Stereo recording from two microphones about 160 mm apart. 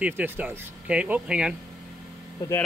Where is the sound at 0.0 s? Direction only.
10° right (ahead or behind).